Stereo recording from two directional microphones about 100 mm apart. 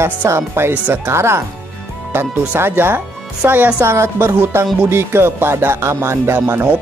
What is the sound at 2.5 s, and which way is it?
Speech, 25° right (ahead or behind).